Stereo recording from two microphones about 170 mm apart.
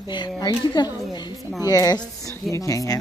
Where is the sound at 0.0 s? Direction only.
25° left (ahead or behind).